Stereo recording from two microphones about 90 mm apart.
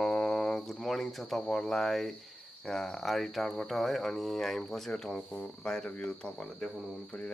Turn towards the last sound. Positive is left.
turn(degrees=15)  # may be behind; listen again after turning